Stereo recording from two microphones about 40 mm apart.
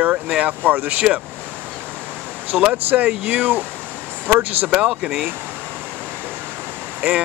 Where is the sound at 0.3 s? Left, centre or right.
Right.